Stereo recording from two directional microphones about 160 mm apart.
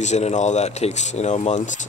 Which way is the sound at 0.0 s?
45° left (ahead or behind).